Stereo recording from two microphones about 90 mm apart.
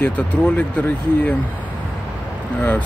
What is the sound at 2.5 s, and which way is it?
Speech, 15° left (ahead or behind).